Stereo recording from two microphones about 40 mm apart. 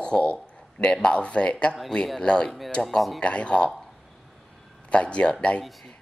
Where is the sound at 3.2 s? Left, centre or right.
Left.